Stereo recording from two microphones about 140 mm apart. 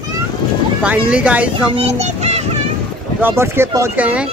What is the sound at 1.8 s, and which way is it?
Speech, 50° right (ahead or behind).